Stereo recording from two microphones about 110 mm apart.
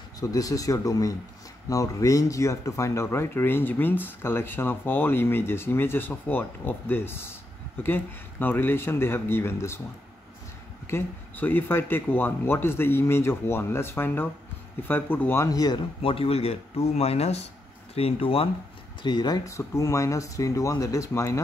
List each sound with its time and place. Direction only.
0.2 s speech: 30° left (ahead or behind)
10.9 s speech: 20° left (ahead or behind); by 15.8 s 35° left (ahead or behind)
16.0 s speech: 60° left (ahead or behind)
17.9 s speech: 60° left (ahead or behind)
19.0 s speech: 40° left (ahead or behind); by 21.4 s 25° left (ahead or behind)